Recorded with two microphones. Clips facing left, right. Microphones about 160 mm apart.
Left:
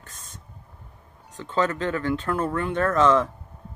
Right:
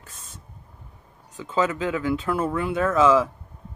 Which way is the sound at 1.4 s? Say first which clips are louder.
Right 1 dB; 5° right (ahead or behind).